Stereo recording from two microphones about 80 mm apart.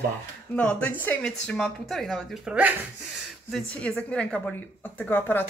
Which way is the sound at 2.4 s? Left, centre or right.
Centre.